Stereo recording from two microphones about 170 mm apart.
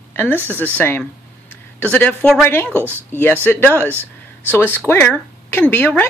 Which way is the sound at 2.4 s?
10° left (ahead or behind).